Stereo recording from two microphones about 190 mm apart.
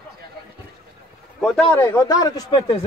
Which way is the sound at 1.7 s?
10° left (ahead or behind).